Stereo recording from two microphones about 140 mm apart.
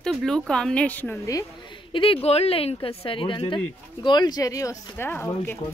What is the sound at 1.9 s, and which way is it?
Speech, 40° left (ahead or behind).